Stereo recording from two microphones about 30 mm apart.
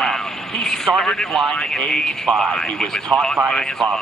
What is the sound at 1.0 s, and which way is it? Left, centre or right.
A man's voice, centre.